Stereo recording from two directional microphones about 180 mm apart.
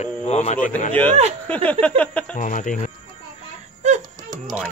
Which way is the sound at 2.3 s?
45° left (ahead or behind).